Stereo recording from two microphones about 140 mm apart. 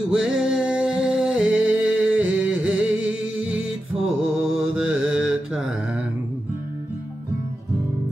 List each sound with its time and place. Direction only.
0.1 s music: 5° right (ahead or behind)
4.0 s mantra: 5° right (ahead or behind)